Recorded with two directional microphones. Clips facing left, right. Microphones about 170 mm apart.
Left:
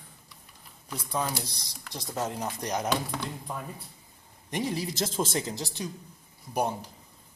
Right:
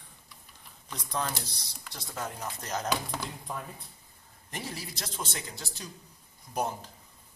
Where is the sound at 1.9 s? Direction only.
20° left (ahead or behind).